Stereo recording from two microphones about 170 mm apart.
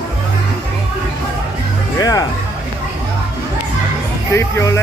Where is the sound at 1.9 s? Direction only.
20° left (ahead or behind).